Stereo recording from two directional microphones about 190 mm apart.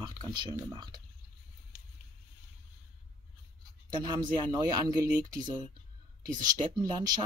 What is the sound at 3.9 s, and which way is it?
Speech, 20° right (ahead or behind).